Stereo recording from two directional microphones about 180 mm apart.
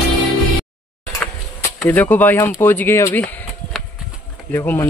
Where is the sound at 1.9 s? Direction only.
10° left (ahead or behind).